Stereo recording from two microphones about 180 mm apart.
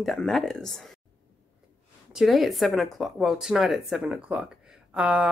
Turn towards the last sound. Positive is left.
turn(degrees=-5)  # may be behind; listen again after turning